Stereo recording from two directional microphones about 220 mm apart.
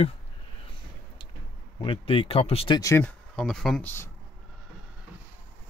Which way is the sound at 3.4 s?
Centre (ahead or behind).